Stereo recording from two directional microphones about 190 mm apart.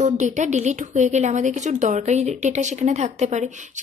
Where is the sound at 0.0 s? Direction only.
40° right (ahead or behind).